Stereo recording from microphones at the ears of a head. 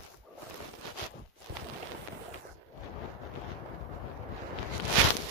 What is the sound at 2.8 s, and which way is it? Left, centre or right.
Vehicle, left.